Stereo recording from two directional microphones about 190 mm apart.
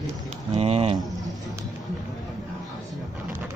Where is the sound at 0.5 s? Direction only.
30° right (ahead or behind).